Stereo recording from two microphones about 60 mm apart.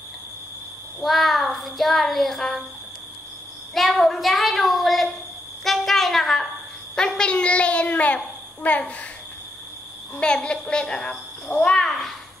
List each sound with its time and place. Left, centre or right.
1.0 s a child's voice: centre
3.7 s a child's voice: centre
5.6 s a sound: centre
7.0 s a child's voice: centre
10.2 s a child's voice: centre